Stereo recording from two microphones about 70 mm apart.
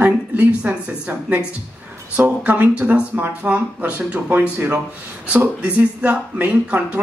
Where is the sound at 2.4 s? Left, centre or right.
Centre.